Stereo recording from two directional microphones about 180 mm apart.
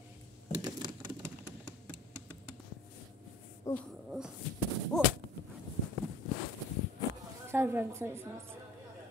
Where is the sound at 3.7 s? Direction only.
15° left (ahead or behind).